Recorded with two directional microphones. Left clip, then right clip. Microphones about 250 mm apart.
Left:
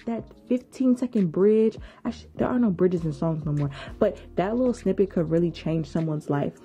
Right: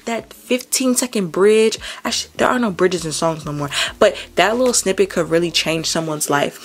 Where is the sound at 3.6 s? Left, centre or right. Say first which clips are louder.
Right 11 dB; centre.